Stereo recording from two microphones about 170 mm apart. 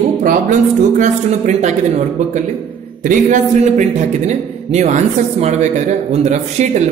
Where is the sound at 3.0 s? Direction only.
45° right (ahead or behind).